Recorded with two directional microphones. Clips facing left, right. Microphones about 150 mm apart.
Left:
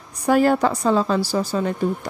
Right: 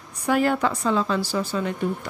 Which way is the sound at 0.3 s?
40° left (ahead or behind).